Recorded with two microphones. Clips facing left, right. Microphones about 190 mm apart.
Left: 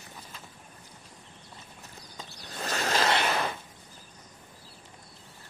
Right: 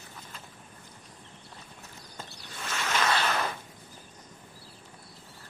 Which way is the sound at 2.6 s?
35° left (ahead or behind).